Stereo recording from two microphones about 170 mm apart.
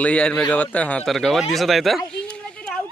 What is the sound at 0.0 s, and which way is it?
A man's voice, 5° left (ahead or behind).